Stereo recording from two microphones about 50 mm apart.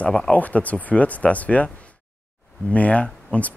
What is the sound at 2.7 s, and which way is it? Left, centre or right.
Speech, left.